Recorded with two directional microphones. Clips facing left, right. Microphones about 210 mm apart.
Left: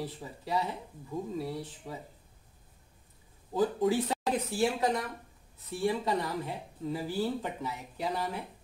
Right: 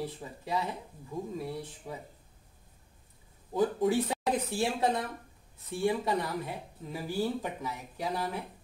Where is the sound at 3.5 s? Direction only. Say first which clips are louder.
Even; 20° right (ahead or behind).